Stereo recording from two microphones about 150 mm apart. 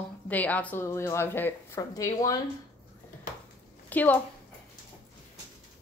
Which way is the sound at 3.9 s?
10° left (ahead or behind).